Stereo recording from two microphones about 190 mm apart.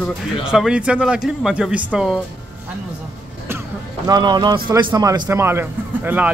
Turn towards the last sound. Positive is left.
turn(degrees=-10)  # may be behind; listen again after turning